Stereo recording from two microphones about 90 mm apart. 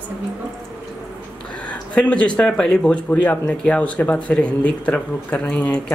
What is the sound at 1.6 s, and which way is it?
Speech, 15° left (ahead or behind).